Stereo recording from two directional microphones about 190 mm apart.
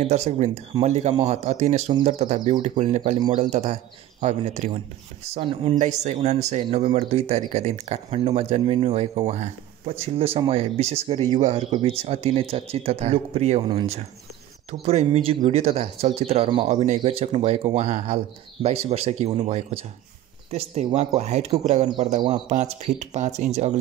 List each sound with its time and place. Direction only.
0.0 s speech: 35° right (ahead or behind)